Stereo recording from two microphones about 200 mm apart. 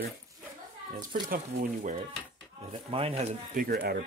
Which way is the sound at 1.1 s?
45° right (ahead or behind).